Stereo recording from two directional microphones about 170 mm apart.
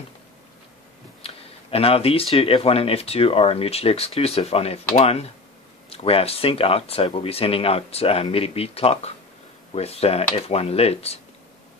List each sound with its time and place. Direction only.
1.2 s speech: 35° left (ahead or behind)